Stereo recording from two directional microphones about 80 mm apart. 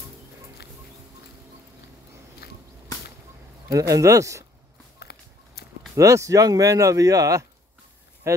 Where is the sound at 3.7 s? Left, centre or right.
Right.